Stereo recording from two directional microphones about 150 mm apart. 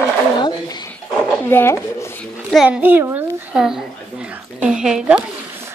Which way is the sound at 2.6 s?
10° right (ahead or behind).